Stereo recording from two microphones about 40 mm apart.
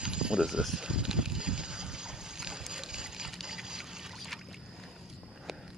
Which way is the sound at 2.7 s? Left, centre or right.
Centre.